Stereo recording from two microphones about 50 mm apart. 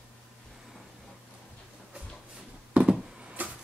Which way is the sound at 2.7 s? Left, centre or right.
Right.